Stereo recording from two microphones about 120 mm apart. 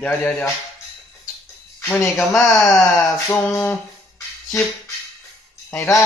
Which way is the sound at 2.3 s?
Centre (ahead or behind).